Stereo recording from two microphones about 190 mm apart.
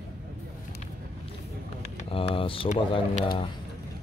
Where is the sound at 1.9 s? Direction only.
30° left (ahead or behind).